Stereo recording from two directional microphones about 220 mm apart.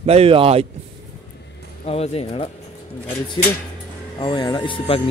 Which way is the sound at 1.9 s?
25° left (ahead or behind).